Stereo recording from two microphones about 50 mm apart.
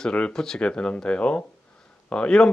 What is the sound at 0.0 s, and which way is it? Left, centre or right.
Speech, centre.